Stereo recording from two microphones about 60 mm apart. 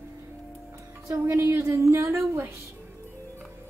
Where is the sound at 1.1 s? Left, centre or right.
Right.